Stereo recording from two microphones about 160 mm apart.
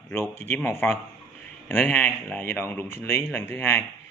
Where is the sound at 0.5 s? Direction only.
15° left (ahead or behind).